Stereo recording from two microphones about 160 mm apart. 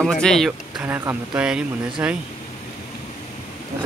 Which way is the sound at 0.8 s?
10° right (ahead or behind).